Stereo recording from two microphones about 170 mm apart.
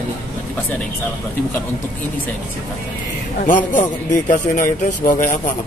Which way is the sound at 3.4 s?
50° left (ahead or behind).